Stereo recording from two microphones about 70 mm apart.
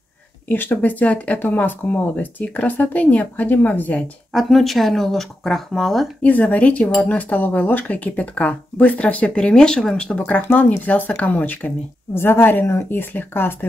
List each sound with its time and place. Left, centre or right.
0.5 s speech: left
4.3 s speech: centre
6.2 s speech: centre